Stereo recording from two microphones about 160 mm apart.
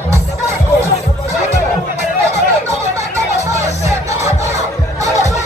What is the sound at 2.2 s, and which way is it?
Music, 20° right (ahead or behind).